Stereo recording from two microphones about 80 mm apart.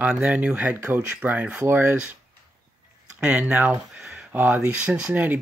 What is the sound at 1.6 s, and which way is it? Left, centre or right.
Speech, right.